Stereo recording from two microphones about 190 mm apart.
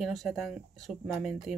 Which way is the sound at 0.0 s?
Centre (ahead or behind).